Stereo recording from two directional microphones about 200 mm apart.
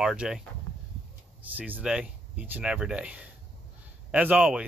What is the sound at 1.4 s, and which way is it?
Speech, 10° right (ahead or behind).